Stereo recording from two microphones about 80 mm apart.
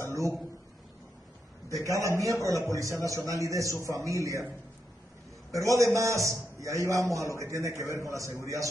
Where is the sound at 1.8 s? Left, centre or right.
Right.